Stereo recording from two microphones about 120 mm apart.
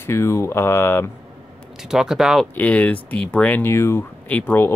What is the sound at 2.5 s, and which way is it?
Speech, 10° left (ahead or behind).